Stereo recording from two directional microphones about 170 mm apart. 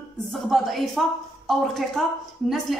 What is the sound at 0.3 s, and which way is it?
A woman's voice, centre (ahead or behind).